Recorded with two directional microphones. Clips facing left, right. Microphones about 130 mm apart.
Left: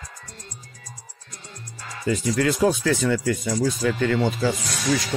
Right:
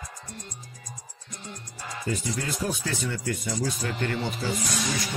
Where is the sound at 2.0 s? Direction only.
90° left.